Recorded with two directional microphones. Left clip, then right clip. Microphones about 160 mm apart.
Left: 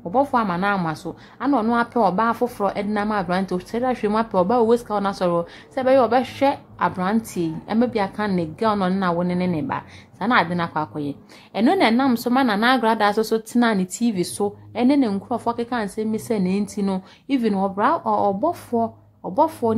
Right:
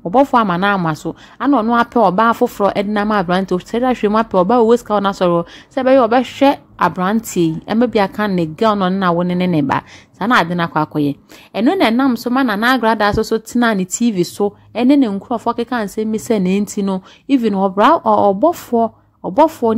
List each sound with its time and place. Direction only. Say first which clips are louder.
0.1 s a woman's voice: right 7 dB; 40° right (ahead or behind)
10.1 s a woman's voice: right 5 dB; 35° right (ahead or behind)
11.6 s a woman's voice: right 4 dB; 25° right (ahead or behind)
17.7 s a woman's voice: right 10 dB; 45° right (ahead or behind)